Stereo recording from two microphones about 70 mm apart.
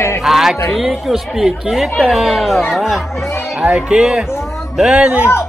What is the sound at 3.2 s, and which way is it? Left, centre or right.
Chatter, left.